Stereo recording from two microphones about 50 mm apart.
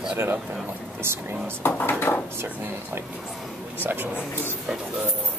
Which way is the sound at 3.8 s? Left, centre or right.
Right.